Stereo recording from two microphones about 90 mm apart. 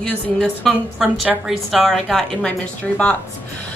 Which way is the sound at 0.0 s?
10° left (ahead or behind).